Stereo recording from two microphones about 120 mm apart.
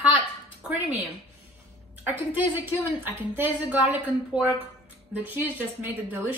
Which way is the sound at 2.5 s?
15° right (ahead or behind).